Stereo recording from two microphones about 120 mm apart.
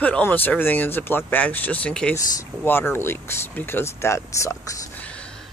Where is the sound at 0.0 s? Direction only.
15° left (ahead or behind).